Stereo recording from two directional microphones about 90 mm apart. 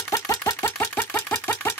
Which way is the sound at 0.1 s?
35° left (ahead or behind).